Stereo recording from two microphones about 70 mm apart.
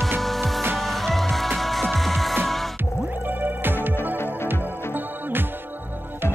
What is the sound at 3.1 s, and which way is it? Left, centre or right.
Music, right.